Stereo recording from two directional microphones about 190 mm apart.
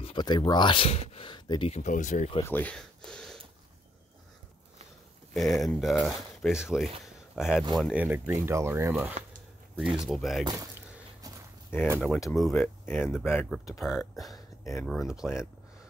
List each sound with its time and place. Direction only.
0.0 s speech: 25° left (ahead or behind)
1.8 s speech: 40° left (ahead or behind)
2.4 s speech: 10° left (ahead or behind)
5.3 s speech: centre (ahead or behind)
9.9 s speech: centre (ahead or behind)
10.4 s speech: 20° right (ahead or behind)
11.2 s a sound: 20° right (ahead or behind)
12.3 s speech: 5° left (ahead or behind)
13.7 s speech: centre (ahead or behind)
14.3 s a sound: 15° left (ahead or behind)
14.9 s speech: centre (ahead or behind)